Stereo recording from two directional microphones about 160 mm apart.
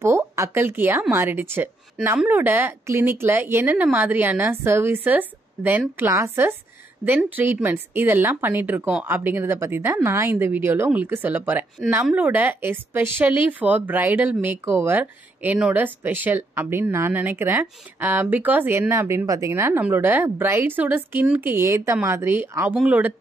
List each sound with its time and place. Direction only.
0.0 s speech: 15° right (ahead or behind)